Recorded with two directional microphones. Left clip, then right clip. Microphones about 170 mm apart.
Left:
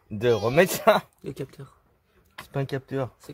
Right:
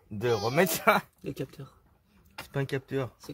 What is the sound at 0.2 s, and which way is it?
Speech, 50° left (ahead or behind).